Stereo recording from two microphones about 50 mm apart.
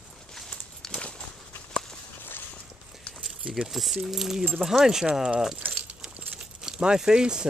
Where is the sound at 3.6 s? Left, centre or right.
Centre.